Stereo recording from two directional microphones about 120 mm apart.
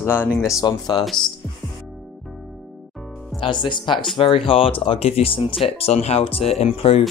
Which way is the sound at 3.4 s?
40° left (ahead or behind).